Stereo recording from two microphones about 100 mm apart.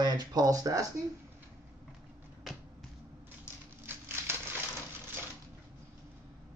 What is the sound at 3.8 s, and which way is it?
Crumpling, 25° right (ahead or behind).